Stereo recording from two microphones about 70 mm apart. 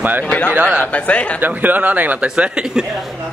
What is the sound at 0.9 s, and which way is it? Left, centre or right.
Speech, centre.